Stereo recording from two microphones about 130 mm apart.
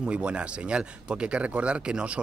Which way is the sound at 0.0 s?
10° right (ahead or behind).